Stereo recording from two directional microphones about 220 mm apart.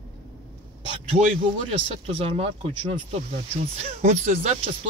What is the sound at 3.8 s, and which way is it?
Speech, 30° right (ahead or behind).